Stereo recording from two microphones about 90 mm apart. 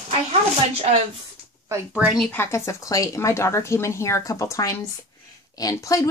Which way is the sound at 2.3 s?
30° left (ahead or behind).